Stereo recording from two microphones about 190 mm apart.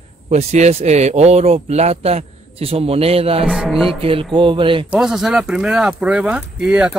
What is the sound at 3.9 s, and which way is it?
Speech, 30° right (ahead or behind).